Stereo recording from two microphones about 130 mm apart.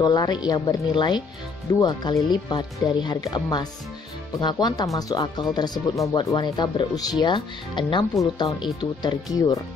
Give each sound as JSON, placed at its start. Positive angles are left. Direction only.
{"t": 0.0, "sound": "speech", "side_deg": 35}